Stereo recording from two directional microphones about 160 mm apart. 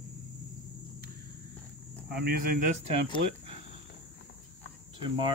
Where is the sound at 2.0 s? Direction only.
80° right.